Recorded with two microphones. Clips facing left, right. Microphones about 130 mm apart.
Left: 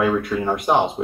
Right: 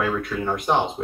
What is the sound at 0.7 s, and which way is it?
Speech, 10° left (ahead or behind).